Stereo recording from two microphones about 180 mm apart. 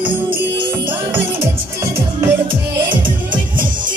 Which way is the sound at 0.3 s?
10° right (ahead or behind).